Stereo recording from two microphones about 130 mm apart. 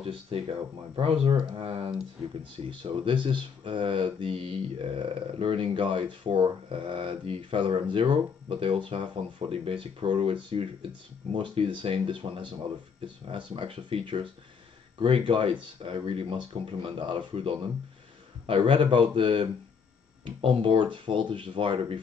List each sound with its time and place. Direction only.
0.0 s speech: 45° right (ahead or behind)